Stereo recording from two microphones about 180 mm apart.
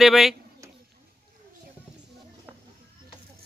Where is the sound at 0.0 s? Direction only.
Centre (ahead or behind).